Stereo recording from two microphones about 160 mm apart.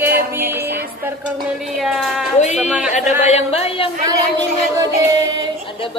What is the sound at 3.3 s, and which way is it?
Speech, 40° left (ahead or behind).